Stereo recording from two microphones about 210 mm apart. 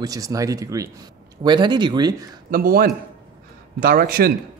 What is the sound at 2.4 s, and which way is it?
A man's voice, 45° right (ahead or behind).